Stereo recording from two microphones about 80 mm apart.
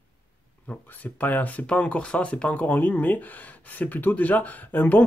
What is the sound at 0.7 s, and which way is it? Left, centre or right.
Speech, centre.